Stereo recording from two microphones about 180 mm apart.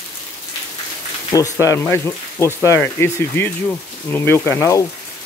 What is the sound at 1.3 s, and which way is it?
Speech, 20° left (ahead or behind).